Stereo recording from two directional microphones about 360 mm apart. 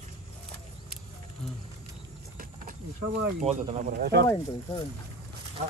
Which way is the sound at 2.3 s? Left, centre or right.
Right.